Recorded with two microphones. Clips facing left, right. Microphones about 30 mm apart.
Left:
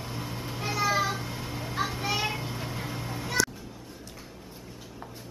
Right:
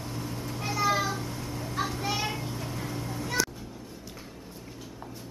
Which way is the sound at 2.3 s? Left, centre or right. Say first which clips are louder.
Even; left.